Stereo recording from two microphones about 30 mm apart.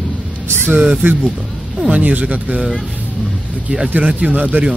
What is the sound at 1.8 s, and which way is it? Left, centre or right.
Speech, right.